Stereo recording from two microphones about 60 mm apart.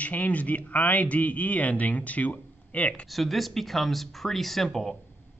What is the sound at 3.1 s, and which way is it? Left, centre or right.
Speech, centre.